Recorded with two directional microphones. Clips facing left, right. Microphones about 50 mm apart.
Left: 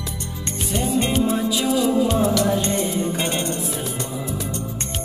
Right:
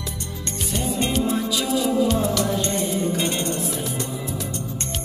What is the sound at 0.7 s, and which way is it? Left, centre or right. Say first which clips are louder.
Music: left 3 dB; centre.